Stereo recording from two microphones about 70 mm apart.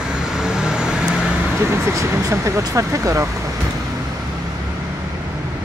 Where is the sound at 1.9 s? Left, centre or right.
Right.